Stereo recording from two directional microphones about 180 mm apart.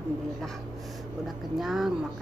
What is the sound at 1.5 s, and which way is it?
Speech, centre (ahead or behind).